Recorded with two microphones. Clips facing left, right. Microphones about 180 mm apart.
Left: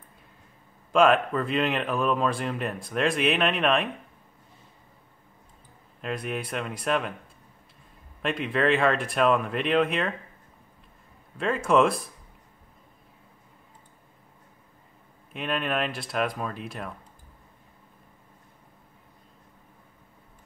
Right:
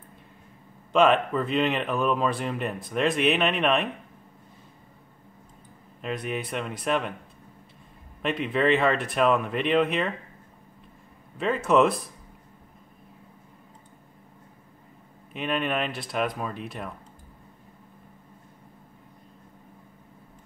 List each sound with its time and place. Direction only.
0.9 s speech: centre (ahead or behind)
5.9 s speech: centre (ahead or behind)
8.2 s speech: centre (ahead or behind)
11.3 s speech: centre (ahead or behind)
15.3 s speech: centre (ahead or behind)